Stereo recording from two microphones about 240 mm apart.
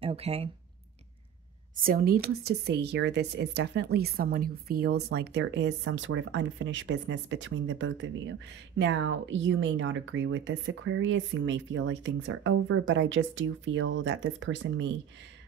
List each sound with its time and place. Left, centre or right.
0.0 s speech: right
1.8 s a woman's voice: right